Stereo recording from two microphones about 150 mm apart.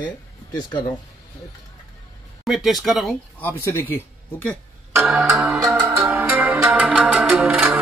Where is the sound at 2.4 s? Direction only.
Centre (ahead or behind).